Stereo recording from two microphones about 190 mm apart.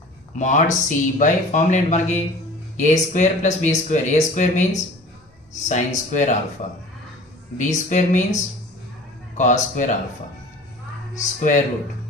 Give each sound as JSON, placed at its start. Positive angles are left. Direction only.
{"t": 0.4, "sound": "speech", "side_deg": 40}
{"t": 5.7, "sound": "speech", "side_deg": 40}
{"t": 7.5, "sound": "speech", "side_deg": 40}
{"t": 9.4, "sound": "speech", "side_deg": 40}
{"t": 11.1, "sound": "speech", "side_deg": 40}